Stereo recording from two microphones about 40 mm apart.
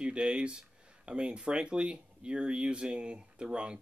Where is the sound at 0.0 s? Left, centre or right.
Right.